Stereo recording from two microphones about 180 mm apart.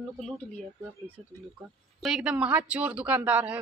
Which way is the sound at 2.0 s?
Centre (ahead or behind).